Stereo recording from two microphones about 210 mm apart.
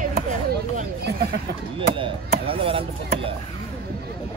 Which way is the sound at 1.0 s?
50° right (ahead or behind).